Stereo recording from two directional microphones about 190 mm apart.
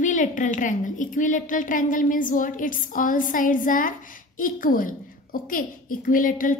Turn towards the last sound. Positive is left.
turn(degrees=45)  # may be behind; listen again after turning